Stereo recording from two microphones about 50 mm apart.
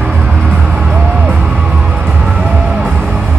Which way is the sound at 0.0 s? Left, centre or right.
Right.